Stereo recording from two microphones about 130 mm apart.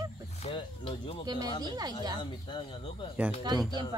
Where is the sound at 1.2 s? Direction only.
30° right (ahead or behind).